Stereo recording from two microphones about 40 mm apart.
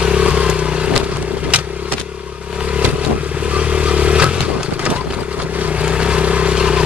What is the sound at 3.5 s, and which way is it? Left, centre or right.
Vehicle, right.